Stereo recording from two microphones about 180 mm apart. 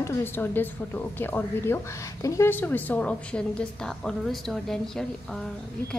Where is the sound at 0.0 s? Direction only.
10° left (ahead or behind).